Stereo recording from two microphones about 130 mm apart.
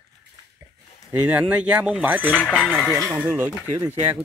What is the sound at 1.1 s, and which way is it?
Speech, 10° right (ahead or behind).